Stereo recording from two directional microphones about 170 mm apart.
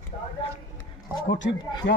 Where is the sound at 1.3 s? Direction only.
90° left.